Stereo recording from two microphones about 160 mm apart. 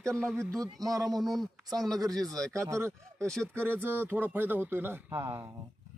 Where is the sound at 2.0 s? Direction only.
25° right (ahead or behind).